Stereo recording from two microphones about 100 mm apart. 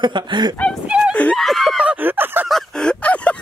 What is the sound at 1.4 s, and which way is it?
Speech, centre (ahead or behind).